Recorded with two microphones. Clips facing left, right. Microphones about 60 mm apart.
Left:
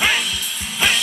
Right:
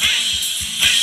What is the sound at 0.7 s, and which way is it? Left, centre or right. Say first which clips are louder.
Music: left 1 dB; left.